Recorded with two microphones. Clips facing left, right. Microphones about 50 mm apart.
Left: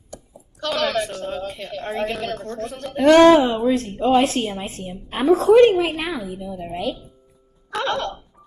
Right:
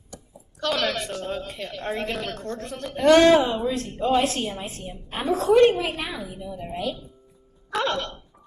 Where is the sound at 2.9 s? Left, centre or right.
Left.